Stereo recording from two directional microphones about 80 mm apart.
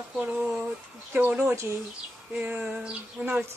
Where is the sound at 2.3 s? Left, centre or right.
Centre.